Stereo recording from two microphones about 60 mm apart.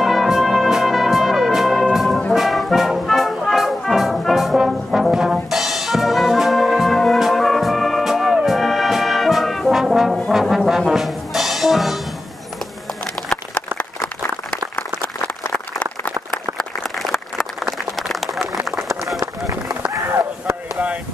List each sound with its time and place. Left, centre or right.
0.0 s music: centre
2.3 s brass instrument: centre
10.9 s music: centre
13.0 s a sound: centre
13.7 s a sound: left
16.5 s applause: centre